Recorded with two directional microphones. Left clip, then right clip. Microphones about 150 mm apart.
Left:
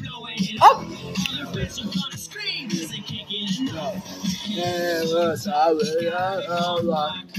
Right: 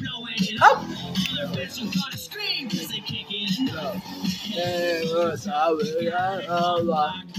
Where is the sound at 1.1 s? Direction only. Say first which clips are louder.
Even; 15° right (ahead or behind).